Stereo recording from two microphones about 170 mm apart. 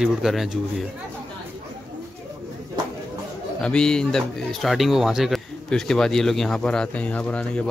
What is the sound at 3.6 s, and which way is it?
Speech, 5° left (ahead or behind).